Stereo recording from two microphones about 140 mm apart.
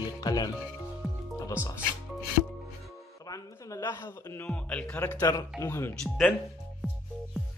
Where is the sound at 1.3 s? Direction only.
25° left (ahead or behind).